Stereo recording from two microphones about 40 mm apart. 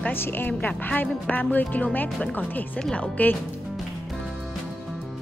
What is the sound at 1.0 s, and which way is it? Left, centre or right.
A woman's voice, left.